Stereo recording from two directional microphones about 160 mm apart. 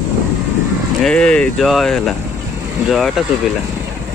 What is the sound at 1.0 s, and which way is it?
Speech, 5° left (ahead or behind).